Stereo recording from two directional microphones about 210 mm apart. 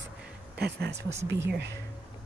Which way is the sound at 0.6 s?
50° right (ahead or behind).